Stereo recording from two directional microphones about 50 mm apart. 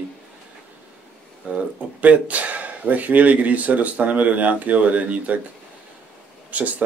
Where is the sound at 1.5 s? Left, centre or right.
Right.